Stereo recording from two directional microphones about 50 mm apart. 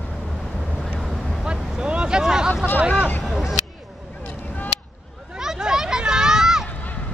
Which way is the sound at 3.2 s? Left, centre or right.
Centre.